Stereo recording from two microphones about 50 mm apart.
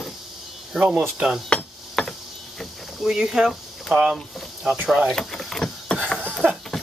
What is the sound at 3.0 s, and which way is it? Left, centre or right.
Speech, centre.